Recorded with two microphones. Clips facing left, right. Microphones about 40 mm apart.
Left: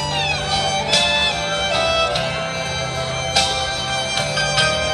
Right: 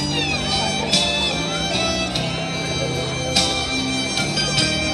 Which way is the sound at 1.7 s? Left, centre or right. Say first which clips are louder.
Left 6 dB; left.